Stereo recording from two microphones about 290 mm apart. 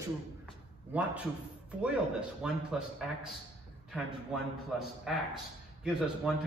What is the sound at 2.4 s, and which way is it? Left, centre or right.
Speech, centre.